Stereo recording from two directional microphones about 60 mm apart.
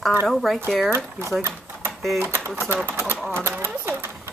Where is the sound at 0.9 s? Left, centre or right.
Right.